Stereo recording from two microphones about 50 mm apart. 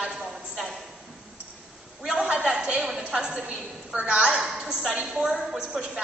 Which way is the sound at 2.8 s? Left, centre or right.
Centre.